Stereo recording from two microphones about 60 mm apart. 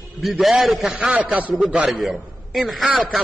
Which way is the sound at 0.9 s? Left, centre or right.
Centre.